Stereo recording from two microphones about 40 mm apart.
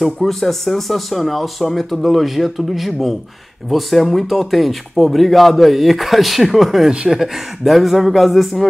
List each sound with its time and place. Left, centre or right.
0.0 s speech: centre